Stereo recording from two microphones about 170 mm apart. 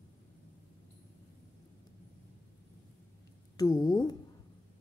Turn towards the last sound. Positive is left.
turn(degrees=25)  # may be behind; listen again after turning